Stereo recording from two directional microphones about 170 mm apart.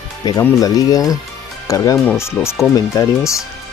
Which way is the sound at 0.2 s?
25° left (ahead or behind).